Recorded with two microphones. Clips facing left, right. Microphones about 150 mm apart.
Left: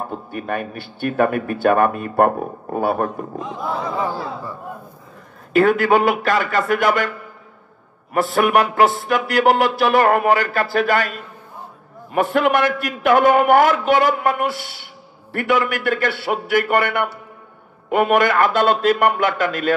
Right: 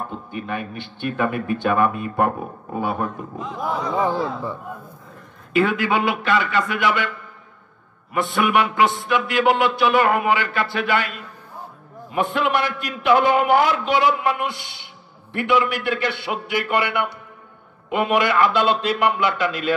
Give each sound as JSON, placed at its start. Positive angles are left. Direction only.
{"t": 0.1, "sound": "speech", "side_deg": 45}
{"t": 4.0, "sound": "speech", "side_deg": -20}
{"t": 5.5, "sound": "speech", "side_deg": 45}
{"t": 8.1, "sound": "speech", "side_deg": 40}
{"t": 14.5, "sound": "speech", "side_deg": 5}
{"t": 15.3, "sound": "speech", "side_deg": 45}